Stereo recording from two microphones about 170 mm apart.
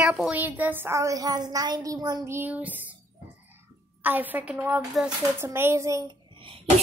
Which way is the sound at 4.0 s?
10° right (ahead or behind).